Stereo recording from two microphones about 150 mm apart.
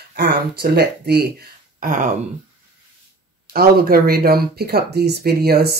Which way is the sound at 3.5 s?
85° right.